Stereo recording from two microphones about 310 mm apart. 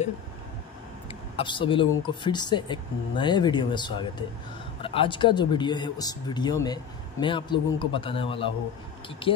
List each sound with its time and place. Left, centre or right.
1.3 s speech: centre